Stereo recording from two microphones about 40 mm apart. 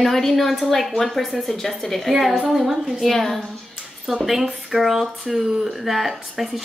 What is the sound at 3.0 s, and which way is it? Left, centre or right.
Speech, centre.